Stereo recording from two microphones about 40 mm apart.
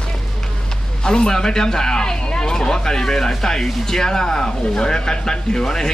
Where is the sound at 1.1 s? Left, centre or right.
Centre.